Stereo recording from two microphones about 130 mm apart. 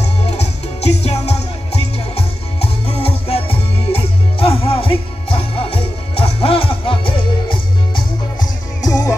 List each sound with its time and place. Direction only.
0.0 s music: 55° left (ahead or behind); by 9.1 s 25° left (ahead or behind)